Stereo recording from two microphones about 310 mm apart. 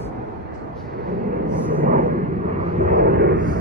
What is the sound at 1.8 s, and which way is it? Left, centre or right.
Vehicle, right.